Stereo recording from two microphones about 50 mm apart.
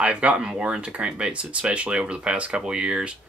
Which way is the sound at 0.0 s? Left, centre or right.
Right.